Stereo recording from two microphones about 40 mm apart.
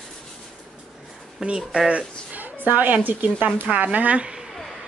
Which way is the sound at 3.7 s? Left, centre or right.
Right.